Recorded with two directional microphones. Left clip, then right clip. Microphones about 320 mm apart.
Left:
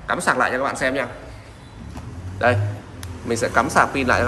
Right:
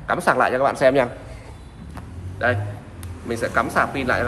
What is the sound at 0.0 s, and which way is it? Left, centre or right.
Speech, centre.